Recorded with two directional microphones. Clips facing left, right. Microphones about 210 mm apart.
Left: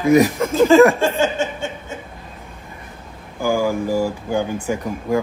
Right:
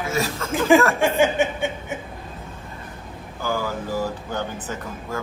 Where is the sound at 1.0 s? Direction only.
15° right (ahead or behind).